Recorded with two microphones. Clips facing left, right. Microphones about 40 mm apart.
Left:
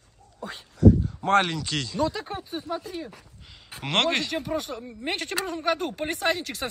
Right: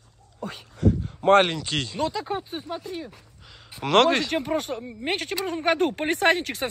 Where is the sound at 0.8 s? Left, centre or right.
Right.